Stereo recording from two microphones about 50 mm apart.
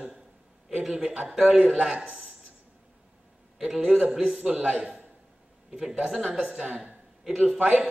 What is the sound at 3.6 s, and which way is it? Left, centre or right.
Speech, centre.